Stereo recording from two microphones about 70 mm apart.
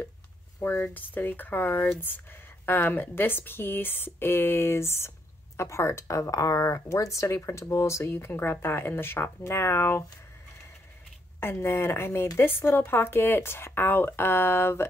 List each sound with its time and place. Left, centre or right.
0.6 s speech: left
11.3 s speech: left